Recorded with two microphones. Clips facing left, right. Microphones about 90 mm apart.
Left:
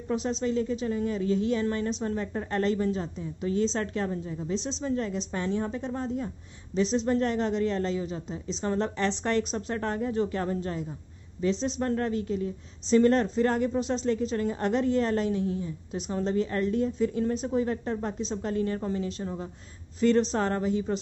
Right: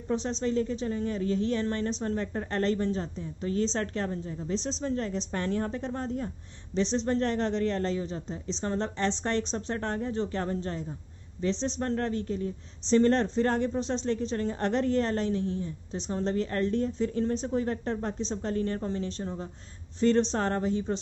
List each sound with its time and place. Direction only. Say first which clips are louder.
0.1 s a woman's voice: left 1 dB; 35° right (ahead or behind)